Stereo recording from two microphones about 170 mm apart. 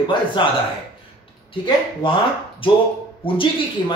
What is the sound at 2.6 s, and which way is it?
Speech, 30° left (ahead or behind).